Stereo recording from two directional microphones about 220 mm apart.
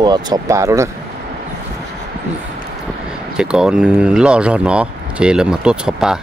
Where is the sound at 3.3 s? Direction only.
5° right (ahead or behind).